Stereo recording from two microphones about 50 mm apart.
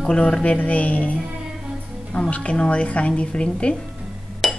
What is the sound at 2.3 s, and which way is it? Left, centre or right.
A woman's voice, left.